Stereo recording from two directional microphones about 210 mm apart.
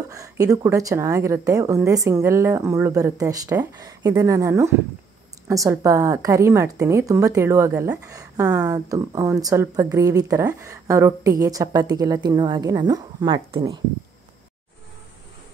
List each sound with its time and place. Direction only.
0.1 s a woman's voice: 15° right (ahead or behind)